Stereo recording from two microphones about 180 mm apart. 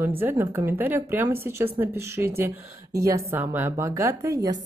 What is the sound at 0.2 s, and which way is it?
Speech, 15° right (ahead or behind).